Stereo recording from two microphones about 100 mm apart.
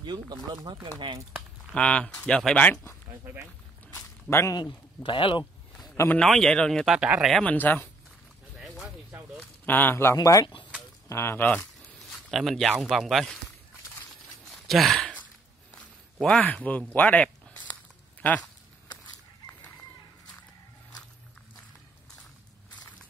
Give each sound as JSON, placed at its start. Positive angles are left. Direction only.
{"t": 0.0, "sound": "speech", "side_deg": -50}
{"t": 1.7, "sound": "speech", "side_deg": 10}
{"t": 3.9, "sound": "a sound", "side_deg": 30}
{"t": 4.6, "sound": "speech", "side_deg": 55}
{"t": 6.1, "sound": "speech", "side_deg": 5}
{"t": 7.4, "sound": "speech", "side_deg": 20}
{"t": 8.5, "sound": "music", "side_deg": 0}
{"t": 9.7, "sound": "a man's voice", "side_deg": 20}
{"t": 10.1, "sound": "speech", "side_deg": 35}
{"t": 12.1, "sound": "speech", "side_deg": 0}
{"t": 14.4, "sound": "a sound", "side_deg": 0}
{"t": 16.9, "sound": "speech", "side_deg": 15}